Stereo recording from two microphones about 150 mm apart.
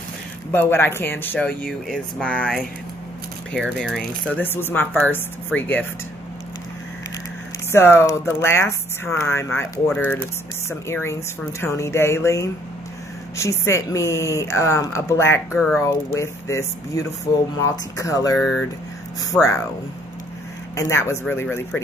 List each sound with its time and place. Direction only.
0.5 s speech: 15° left (ahead or behind)
3.7 s speech: 5° right (ahead or behind)
4.3 s speech: 15° left (ahead or behind)
7.7 s speech: 15° left (ahead or behind)
18.3 s speech: centre (ahead or behind)
20.7 s speech: 20° left (ahead or behind)